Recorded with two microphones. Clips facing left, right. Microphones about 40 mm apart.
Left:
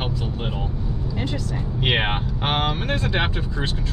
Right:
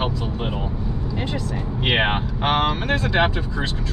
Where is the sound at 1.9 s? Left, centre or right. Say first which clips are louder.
Right 2 dB; centre.